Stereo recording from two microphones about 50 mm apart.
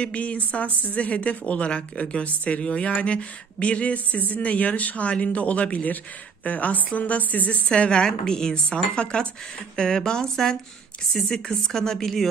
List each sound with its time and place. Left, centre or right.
0.0 s a woman's voice: left; by 12.3 s centre